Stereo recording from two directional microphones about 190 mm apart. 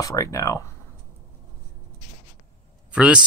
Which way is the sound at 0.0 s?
15° left (ahead or behind).